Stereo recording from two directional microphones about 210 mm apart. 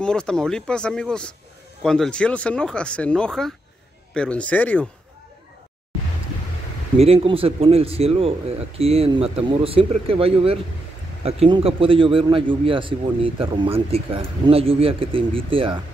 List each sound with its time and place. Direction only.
0.0 s speech: 5° left (ahead or behind)
7.0 s speech: 25° right (ahead or behind)